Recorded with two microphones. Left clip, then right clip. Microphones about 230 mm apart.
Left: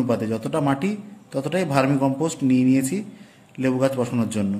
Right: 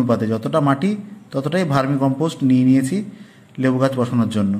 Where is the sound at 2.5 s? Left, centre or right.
Right.